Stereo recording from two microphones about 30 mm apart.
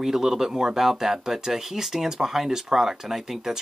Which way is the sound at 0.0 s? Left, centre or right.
Centre.